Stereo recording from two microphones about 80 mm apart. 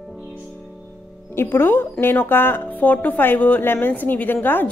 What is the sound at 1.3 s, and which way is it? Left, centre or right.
Speech, left.